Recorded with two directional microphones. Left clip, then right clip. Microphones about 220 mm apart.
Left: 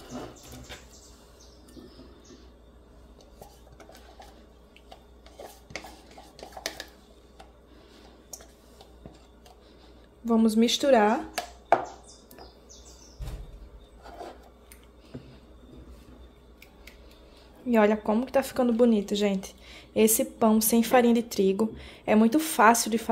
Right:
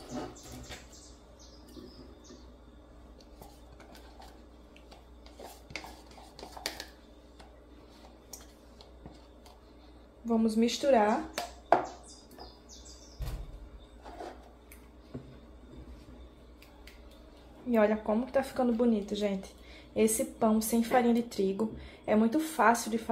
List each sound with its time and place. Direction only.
6.3 s a sound: 10° left (ahead or behind)
10.2 s a woman's voice: 50° left (ahead or behind)
17.6 s a woman's voice: 45° left (ahead or behind)